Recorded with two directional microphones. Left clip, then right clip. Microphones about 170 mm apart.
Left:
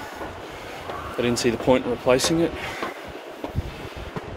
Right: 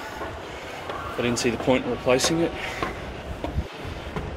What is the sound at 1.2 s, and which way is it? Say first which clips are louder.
Speech: left 2 dB; 20° left (ahead or behind).